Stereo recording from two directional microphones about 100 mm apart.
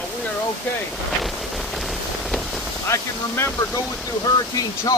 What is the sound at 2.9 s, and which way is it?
Speech, 30° left (ahead or behind).